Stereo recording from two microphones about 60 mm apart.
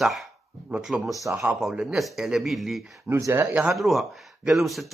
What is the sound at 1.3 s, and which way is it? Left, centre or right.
Speech, right.